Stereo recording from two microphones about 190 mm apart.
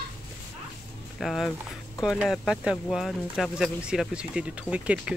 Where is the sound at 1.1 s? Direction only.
Centre (ahead or behind).